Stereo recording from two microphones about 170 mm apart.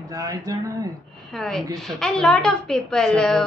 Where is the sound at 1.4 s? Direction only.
Centre (ahead or behind).